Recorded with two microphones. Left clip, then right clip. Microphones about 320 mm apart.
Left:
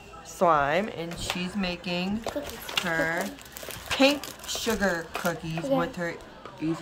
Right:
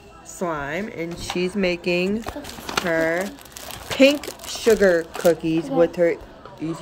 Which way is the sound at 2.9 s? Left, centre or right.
Centre.